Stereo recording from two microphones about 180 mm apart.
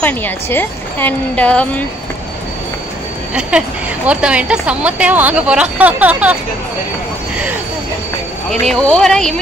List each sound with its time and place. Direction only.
0.0 s a woman's voice: 10° left (ahead or behind)
3.3 s a woman's voice: 5° right (ahead or behind)
8.5 s speech: 5° left (ahead or behind)